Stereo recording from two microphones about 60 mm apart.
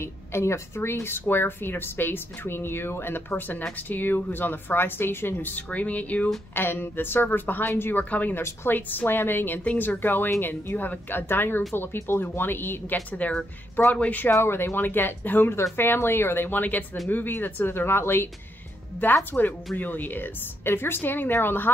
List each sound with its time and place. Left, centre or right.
0.0 s a woman's voice: left
1.2 s a woman's voice: left
6.5 s a woman's voice: left
8.0 s speech: left
8.4 s a woman's voice: left
8.7 s a woman's voice: left
13.2 s speech: left
14.4 s a woman's voice: left
19.3 s a woman's voice: left